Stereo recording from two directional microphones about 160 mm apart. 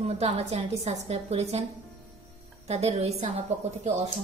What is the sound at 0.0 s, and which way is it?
A woman's voice, 40° right (ahead or behind).